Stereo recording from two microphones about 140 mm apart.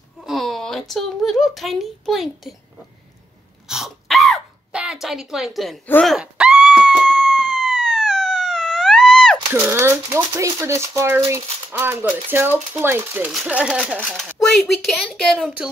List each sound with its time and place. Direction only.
0.2 s speech: centre (ahead or behind)
3.6 s a sound: 5° right (ahead or behind)
6.0 s screaming: 5° right (ahead or behind)
9.5 s speech: 15° right (ahead or behind)
13.3 s speech: 5° right (ahead or behind)
13.9 s speech: 5° left (ahead or behind)
15.4 s speech: 5° right (ahead or behind)